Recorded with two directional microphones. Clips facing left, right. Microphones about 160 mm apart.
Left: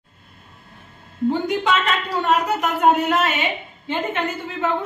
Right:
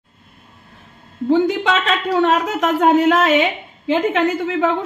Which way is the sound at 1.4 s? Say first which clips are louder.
Right 3 dB; 90° right.